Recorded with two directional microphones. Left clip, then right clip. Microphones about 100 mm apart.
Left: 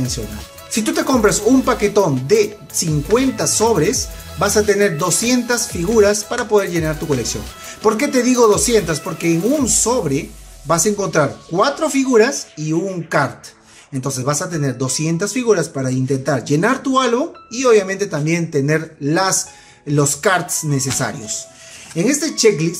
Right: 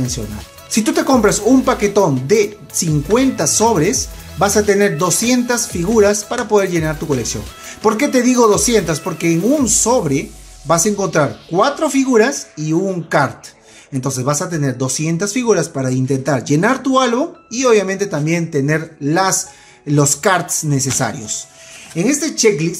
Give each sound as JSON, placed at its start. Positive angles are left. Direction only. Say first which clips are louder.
{"t": 0.7, "sound": "speech", "louder": "right 3 dB", "side_deg": -40}